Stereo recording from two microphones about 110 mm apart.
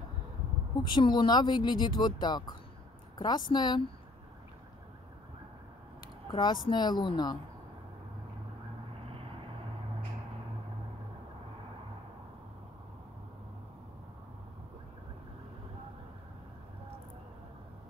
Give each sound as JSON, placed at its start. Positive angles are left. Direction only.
{"t": 0.8, "sound": "speech", "side_deg": 45}
{"t": 6.3, "sound": "a woman's voice", "side_deg": 45}